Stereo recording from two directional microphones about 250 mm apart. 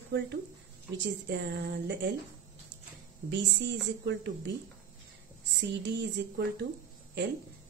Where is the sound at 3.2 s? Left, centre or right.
Right.